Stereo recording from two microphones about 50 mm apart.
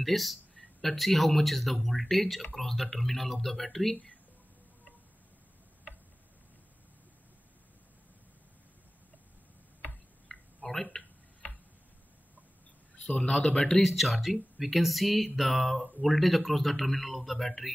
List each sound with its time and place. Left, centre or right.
0.0 s speech: centre
10.2 s a sound: left
10.7 s tick-tock: centre
13.2 s speech: centre